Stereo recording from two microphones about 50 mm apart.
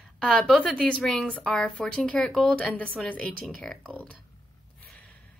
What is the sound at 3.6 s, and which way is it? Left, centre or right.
Speech, centre.